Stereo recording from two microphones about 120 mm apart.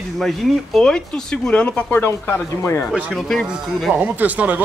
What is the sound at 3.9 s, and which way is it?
Speech, 15° right (ahead or behind).